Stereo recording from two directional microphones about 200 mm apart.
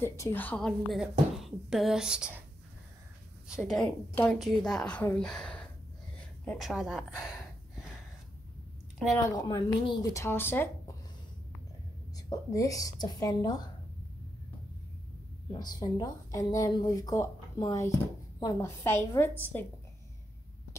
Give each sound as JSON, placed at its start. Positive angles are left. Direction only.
{"t": 0.0, "sound": "speech", "side_deg": 15}
{"t": 3.4, "sound": "a woman's voice", "side_deg": 0}
{"t": 9.1, "sound": "speech", "side_deg": 20}
{"t": 12.2, "sound": "speech", "side_deg": 15}
{"t": 15.6, "sound": "speech", "side_deg": 20}